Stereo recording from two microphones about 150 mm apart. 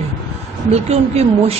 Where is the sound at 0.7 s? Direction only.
45° right (ahead or behind).